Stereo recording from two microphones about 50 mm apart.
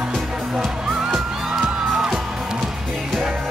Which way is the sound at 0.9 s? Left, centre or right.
Centre.